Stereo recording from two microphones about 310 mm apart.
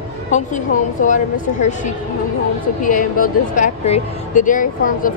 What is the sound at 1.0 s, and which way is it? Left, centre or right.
Speech, left.